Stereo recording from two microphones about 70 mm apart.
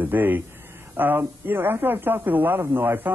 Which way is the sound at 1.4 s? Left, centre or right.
Right.